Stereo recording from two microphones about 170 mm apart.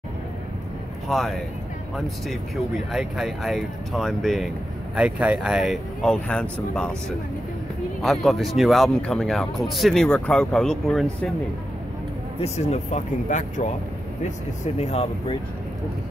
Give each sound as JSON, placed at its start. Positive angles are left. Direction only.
{"t": 1.0, "sound": "speech", "side_deg": 0}
{"t": 12.4, "sound": "speech", "side_deg": 40}
{"t": 14.8, "sound": "speech", "side_deg": 40}